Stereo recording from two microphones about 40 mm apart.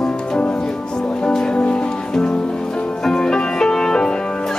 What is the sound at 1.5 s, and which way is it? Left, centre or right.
Music, left.